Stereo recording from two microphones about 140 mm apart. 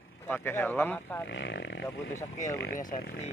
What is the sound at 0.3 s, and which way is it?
Speech, 15° left (ahead or behind).